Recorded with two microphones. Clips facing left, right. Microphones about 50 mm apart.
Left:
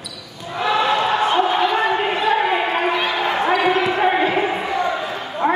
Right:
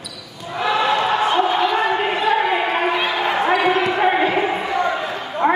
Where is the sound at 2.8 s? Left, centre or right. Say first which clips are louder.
Even; centre.